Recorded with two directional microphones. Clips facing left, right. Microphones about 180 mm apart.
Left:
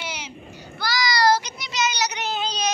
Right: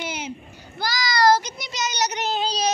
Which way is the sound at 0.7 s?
45° right (ahead or behind).